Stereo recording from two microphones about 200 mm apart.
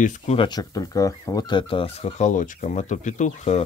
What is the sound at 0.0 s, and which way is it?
Speech, 40° left (ahead or behind).